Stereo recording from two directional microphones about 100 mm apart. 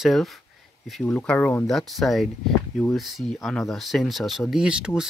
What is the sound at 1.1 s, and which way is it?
Speech, 15° left (ahead or behind).